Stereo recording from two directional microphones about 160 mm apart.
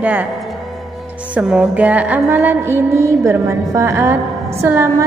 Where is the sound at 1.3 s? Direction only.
5° right (ahead or behind).